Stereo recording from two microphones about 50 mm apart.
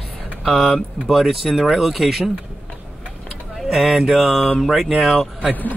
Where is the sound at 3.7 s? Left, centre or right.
Centre.